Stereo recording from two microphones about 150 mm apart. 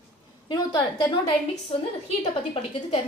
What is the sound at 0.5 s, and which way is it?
Speech, 25° left (ahead or behind).